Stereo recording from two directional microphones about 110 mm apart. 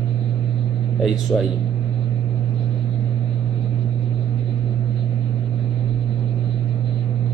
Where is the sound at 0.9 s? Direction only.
Centre (ahead or behind).